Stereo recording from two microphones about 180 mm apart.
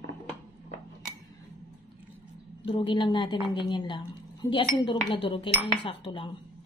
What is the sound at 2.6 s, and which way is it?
A woman's voice, 30° left (ahead or behind).